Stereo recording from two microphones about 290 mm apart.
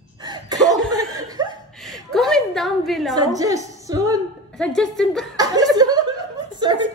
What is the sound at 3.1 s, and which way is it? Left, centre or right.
A woman's voice, centre.